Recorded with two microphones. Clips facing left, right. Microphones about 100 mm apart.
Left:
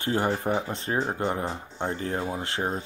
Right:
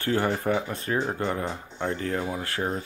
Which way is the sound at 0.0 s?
20° left (ahead or behind).